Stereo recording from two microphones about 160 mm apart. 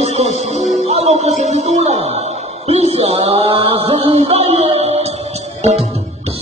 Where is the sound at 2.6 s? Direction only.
40° right (ahead or behind).